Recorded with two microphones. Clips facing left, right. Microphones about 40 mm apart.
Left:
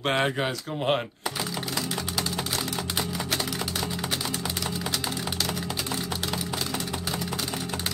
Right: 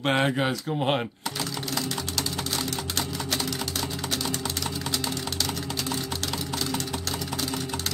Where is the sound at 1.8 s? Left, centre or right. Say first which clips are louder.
Even; centre.